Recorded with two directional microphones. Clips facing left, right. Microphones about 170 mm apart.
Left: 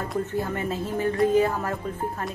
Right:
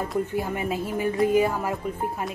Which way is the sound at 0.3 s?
10° right (ahead or behind).